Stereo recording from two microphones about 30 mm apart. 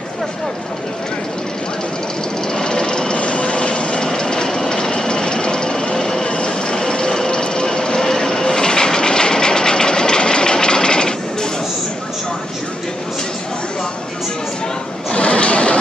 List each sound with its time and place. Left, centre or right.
2.5 s jackhammer: left
3.2 s vehicle: left
4.1 s train: left
4.6 s vehicle: left
6.2 s vehicle: left
15.1 s a sound: left